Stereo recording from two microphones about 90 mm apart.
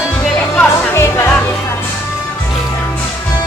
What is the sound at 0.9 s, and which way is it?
Music, 30° left (ahead or behind).